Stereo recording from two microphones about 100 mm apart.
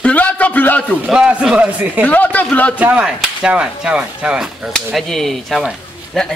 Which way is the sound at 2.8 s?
10° right (ahead or behind).